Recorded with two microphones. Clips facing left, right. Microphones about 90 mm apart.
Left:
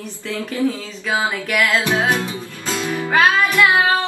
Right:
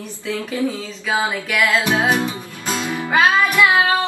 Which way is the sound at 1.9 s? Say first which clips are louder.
Right 1 dB; 15° right (ahead or behind).